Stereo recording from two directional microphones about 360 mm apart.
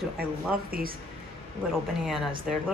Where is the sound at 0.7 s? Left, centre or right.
Right.